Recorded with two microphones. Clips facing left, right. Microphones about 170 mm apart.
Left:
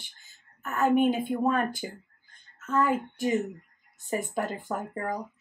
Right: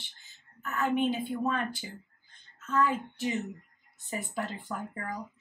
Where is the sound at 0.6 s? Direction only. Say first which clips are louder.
Left 5 dB; 45° left (ahead or behind).